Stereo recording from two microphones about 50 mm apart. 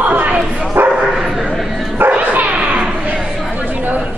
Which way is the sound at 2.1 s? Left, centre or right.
Right.